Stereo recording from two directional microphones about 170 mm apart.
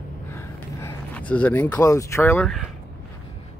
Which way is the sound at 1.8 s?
20° left (ahead or behind).